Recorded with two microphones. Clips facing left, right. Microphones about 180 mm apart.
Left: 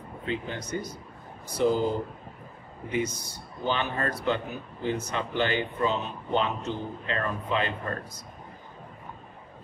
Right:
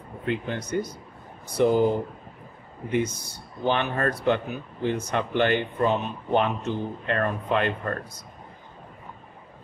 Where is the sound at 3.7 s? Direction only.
55° right (ahead or behind).